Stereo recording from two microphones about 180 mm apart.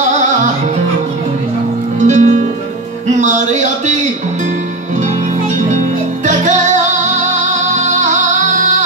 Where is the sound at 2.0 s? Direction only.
40° right (ahead or behind).